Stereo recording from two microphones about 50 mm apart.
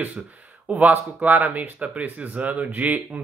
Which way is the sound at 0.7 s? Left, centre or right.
Right.